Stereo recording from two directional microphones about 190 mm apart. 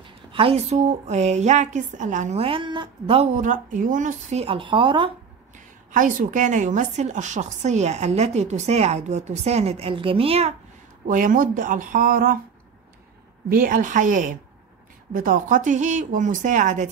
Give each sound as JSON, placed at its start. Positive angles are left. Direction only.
{"t": 0.0, "sound": "a woman's voice", "side_deg": -30}
{"t": 3.3, "sound": "a woman's voice", "side_deg": -40}
{"t": 5.9, "sound": "a woman's voice", "side_deg": -45}
{"t": 11.1, "sound": "speech", "side_deg": -45}
{"t": 13.5, "sound": "a woman's voice", "side_deg": -50}